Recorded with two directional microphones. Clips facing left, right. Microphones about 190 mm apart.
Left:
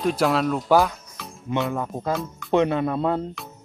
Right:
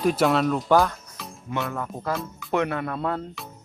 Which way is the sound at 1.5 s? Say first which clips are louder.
Left 4 dB; 20° left (ahead or behind).